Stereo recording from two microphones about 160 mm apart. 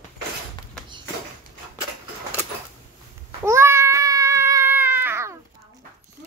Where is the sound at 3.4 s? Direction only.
15° right (ahead or behind).